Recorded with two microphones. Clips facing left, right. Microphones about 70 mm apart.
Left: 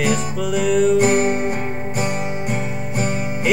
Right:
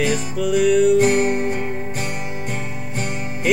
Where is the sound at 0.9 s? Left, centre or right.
Left.